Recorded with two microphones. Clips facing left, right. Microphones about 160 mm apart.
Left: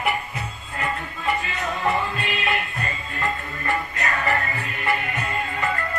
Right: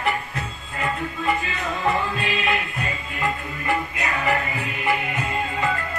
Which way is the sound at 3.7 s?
10° right (ahead or behind).